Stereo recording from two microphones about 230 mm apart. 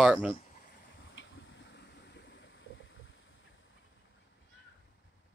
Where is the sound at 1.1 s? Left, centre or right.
Left.